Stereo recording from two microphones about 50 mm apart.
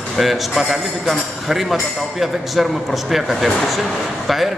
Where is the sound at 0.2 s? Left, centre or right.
Centre.